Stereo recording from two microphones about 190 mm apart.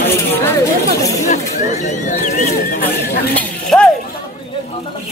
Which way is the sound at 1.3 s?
40° left (ahead or behind).